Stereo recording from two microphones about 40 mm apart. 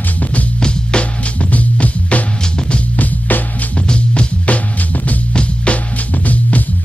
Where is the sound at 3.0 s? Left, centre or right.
Left.